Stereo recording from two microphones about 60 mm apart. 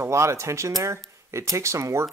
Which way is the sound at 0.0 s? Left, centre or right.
Right.